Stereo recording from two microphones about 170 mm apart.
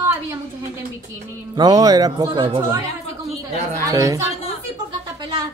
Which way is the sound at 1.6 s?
20° right (ahead or behind).